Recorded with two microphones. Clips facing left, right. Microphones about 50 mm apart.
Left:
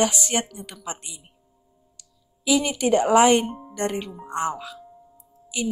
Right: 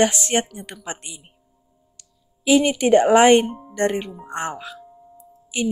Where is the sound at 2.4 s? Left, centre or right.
Right.